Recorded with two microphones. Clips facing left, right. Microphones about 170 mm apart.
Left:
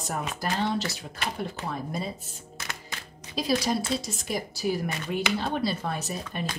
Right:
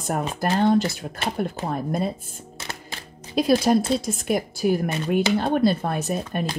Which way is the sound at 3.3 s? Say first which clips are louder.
Right 8 dB; 60° right (ahead or behind).